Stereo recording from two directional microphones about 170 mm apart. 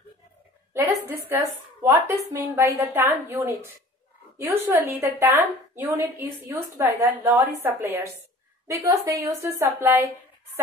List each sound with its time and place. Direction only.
0.7 s a woman's voice: 15° right (ahead or behind)